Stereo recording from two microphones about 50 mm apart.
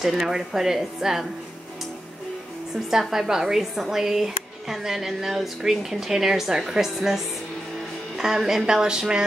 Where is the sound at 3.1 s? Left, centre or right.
Centre.